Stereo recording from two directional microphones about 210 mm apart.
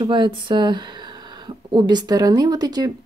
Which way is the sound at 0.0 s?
20° right (ahead or behind).